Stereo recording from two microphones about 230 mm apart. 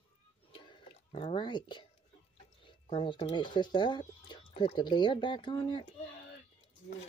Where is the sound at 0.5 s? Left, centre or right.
Left.